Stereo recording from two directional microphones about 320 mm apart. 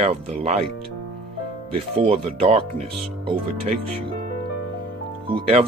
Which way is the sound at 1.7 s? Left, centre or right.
Centre.